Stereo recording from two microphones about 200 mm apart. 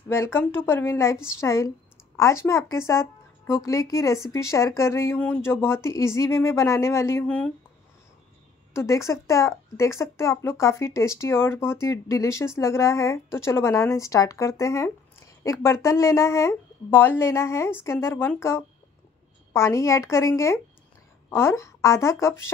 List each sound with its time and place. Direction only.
0.1 s speech: 10° left (ahead or behind)
8.7 s speech: 15° left (ahead or behind)